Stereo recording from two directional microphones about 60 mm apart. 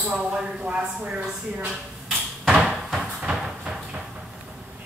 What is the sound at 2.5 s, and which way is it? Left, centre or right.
Cupboard open or close, centre.